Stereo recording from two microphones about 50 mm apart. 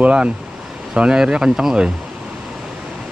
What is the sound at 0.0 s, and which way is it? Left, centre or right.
Speech, right.